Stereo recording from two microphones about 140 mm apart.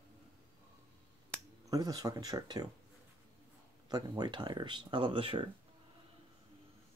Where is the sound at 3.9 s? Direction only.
30° right (ahead or behind).